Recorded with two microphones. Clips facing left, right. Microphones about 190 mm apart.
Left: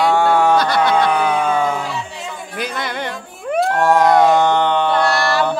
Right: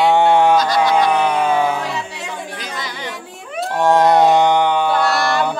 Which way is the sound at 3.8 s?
20° right (ahead or behind).